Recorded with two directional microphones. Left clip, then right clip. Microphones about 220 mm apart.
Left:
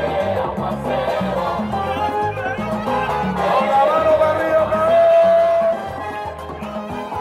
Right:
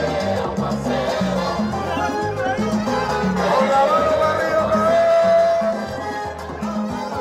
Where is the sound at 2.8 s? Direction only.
25° left (ahead or behind).